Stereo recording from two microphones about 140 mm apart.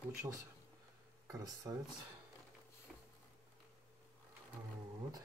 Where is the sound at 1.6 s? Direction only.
25° right (ahead or behind).